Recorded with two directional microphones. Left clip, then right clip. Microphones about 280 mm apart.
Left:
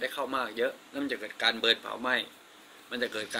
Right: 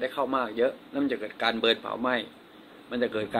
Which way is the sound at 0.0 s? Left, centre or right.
Left.